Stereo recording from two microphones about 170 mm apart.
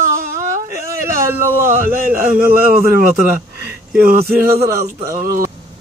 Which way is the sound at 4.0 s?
60° right (ahead or behind).